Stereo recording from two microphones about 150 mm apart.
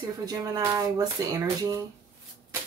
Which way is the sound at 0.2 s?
25° right (ahead or behind).